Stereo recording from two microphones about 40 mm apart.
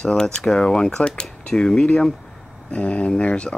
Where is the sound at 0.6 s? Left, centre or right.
Centre.